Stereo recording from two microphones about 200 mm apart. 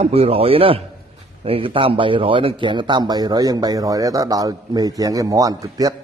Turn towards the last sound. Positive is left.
turn(degrees=-20)  # may be behind; listen again after turning